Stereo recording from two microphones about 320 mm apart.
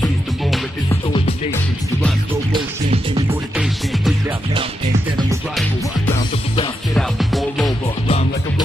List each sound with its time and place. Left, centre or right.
0.0 s music: centre
1.1 s music: centre
2.5 s music: centre
3.5 s music: centre
6.5 s music: centre
7.0 s music: centre
8.1 s music: centre